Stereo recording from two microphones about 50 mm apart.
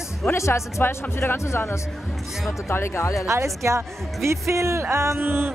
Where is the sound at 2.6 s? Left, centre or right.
Left.